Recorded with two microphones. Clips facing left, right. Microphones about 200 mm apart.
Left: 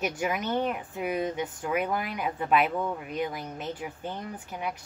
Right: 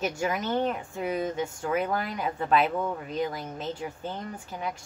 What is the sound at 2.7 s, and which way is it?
Speech, centre (ahead or behind).